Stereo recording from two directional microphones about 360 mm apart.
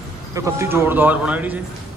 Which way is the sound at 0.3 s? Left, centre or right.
Centre.